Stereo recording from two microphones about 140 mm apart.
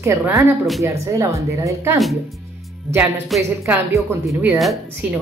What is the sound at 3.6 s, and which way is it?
Speech, 20° right (ahead or behind).